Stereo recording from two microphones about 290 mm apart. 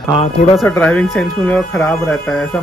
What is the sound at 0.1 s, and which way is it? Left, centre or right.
Speech, left.